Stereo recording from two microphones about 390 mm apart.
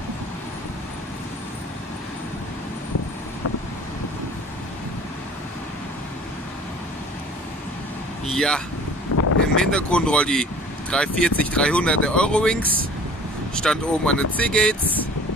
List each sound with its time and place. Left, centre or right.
8.4 s speech: centre
9.1 s a sound: left
9.6 s speech: centre
13.6 s speech: centre